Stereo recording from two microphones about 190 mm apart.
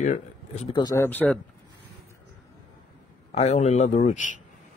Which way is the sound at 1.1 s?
10° left (ahead or behind).